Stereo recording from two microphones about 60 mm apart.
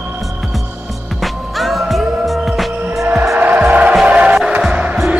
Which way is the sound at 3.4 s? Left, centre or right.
Right.